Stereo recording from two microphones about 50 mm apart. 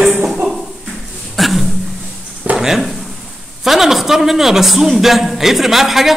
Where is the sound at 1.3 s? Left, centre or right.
Centre.